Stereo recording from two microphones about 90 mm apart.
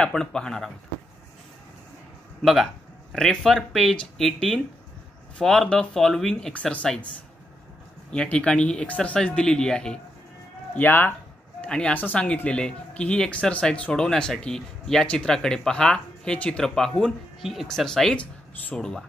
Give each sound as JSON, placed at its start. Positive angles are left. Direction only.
{"t": 0.0, "sound": "speech", "side_deg": 10}
{"t": 2.4, "sound": "speech", "side_deg": 0}
{"t": 8.1, "sound": "speech", "side_deg": 10}
{"t": 10.7, "sound": "speech", "side_deg": 20}
{"t": 11.6, "sound": "speech", "side_deg": 10}